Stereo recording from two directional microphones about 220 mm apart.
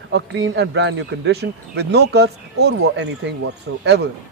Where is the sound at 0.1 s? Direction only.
55° right (ahead or behind).